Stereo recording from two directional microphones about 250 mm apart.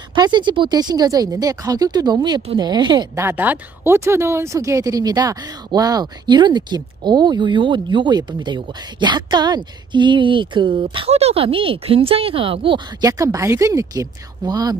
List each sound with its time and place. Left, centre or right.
0.1 s speech: centre